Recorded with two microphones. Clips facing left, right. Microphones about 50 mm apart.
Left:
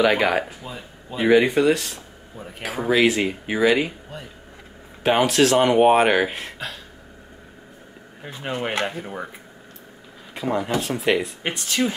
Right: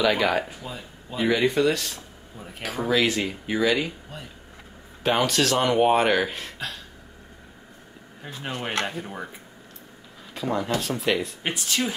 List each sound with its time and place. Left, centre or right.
0.0 s speech: left
5.0 s speech: centre
8.2 s speech: centre
10.3 s speech: centre
11.4 s speech: centre